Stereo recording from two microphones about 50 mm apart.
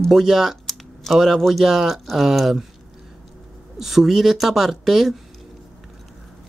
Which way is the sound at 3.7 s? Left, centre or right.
Centre.